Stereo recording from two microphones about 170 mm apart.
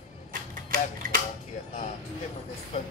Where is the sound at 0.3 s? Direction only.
55° right (ahead or behind).